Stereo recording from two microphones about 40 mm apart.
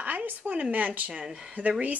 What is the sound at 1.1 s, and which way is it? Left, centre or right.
Speech, right.